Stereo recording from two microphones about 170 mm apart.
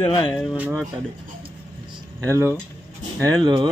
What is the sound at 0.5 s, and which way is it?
Speech, 10° right (ahead or behind).